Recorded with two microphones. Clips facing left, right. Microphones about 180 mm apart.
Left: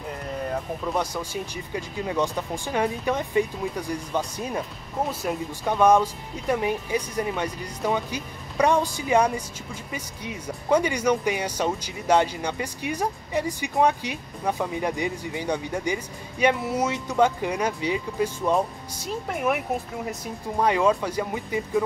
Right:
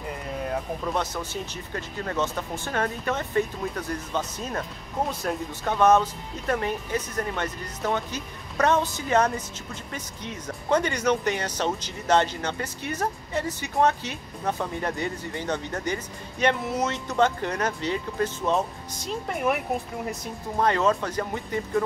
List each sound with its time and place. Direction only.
0.3 s music: centre (ahead or behind)
0.9 s speech: 10° left (ahead or behind)